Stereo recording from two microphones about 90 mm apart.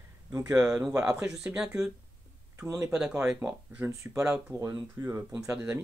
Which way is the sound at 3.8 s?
35° right (ahead or behind).